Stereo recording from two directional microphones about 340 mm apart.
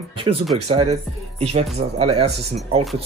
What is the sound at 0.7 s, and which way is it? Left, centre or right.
Speech, centre.